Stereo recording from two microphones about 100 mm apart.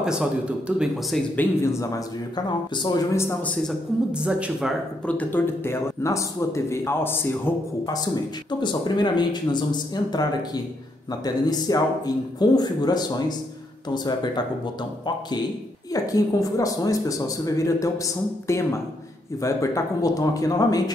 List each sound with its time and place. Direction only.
0.0 s speech: 5° right (ahead or behind)
1.3 s speech: 25° left (ahead or behind)
2.3 s speech: 50° left (ahead or behind)
3.1 s speech: 25° left (ahead or behind)
4.1 s speech: 10° right (ahead or behind)
5.0 s speech: 15° left (ahead or behind)
6.0 s speech: 30° left (ahead or behind)
7.8 s a man's voice: 40° left (ahead or behind)
15.9 s a man's voice: 35° left (ahead or behind)